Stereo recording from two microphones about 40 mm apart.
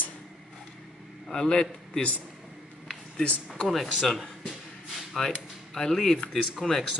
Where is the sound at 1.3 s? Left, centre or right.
Centre.